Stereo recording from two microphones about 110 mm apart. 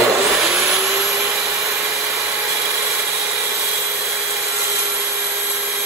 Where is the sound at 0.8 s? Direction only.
25° right (ahead or behind).